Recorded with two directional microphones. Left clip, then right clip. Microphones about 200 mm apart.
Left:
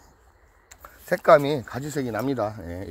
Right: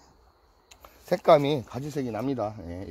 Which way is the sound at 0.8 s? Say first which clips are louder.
Left 2 dB; 15° right (ahead or behind).